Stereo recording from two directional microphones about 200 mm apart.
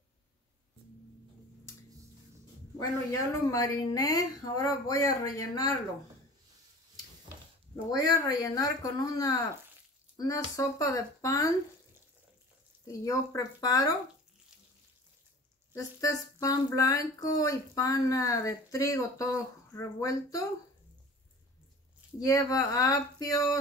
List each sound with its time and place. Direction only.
2.8 s speech: 15° left (ahead or behind)
7.7 s speech: 20° left (ahead or behind)
12.8 s speech: 15° left (ahead or behind)
15.7 s speech: 15° left (ahead or behind)
22.2 s speech: 15° left (ahead or behind)